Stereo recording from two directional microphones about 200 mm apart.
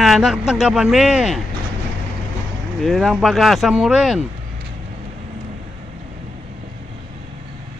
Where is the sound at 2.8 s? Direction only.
Centre (ahead or behind).